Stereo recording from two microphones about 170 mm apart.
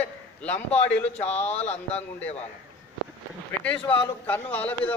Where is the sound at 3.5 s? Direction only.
10° left (ahead or behind).